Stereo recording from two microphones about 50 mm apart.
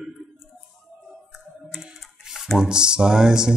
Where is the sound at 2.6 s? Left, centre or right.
Centre.